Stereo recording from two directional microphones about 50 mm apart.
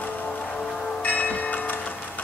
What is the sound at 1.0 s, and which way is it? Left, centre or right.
Church bell, left.